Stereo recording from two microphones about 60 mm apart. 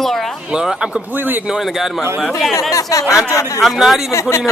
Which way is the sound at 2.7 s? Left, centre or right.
Left.